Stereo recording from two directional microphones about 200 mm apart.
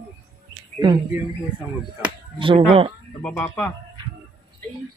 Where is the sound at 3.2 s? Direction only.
10° left (ahead or behind).